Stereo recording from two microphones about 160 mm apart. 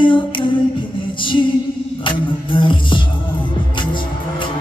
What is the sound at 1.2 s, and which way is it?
Music, 30° left (ahead or behind).